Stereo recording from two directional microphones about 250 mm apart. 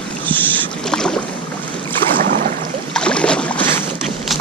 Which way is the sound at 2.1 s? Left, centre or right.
Right.